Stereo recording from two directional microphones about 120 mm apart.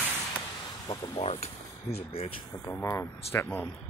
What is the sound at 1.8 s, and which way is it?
Speech, 60° left (ahead or behind).